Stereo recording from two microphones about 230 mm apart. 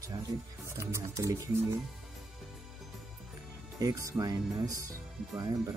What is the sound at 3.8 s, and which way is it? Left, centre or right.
Speech, centre.